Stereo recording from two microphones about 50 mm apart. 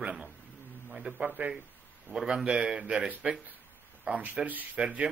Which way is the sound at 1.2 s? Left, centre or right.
Right.